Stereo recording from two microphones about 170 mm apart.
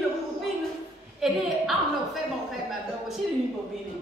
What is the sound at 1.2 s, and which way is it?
A woman's voice, centre (ahead or behind).